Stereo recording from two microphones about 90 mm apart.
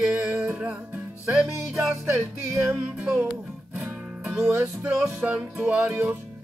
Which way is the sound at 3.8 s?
10° right (ahead or behind).